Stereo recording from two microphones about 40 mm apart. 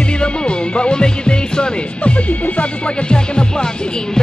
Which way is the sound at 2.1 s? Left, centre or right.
Left.